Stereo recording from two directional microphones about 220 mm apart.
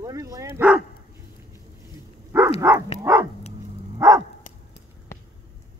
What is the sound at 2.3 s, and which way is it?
Dog, 10° right (ahead or behind).